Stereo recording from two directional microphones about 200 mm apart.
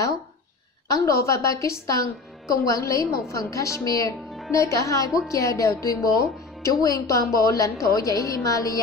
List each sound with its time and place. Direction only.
0.8 s a woman's voice: 15° left (ahead or behind)